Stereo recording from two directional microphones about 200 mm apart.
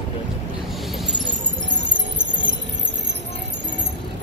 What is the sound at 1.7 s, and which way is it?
Music, 65° right (ahead or behind).